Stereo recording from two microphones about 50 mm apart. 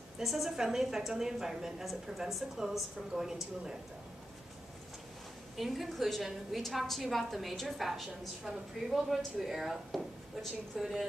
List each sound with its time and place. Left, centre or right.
0.2 s a woman's voice: centre
5.6 s a woman's voice: centre